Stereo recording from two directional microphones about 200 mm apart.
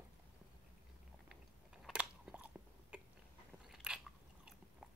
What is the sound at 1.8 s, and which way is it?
Biting, 5° right (ahead or behind).